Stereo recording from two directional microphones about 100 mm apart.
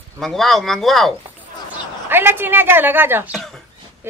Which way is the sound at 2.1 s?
20° right (ahead or behind).